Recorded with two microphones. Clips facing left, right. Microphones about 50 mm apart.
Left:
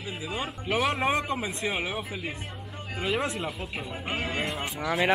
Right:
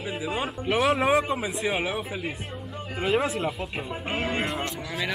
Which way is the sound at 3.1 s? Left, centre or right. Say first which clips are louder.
Right 4 dB; centre.